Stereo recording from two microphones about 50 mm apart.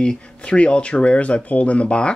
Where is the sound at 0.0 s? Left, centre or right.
Centre.